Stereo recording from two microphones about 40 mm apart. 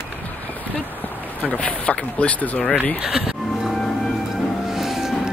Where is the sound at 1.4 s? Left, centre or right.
Left.